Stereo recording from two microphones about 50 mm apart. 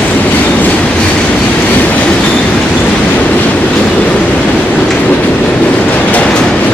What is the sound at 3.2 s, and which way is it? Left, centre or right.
Train, left.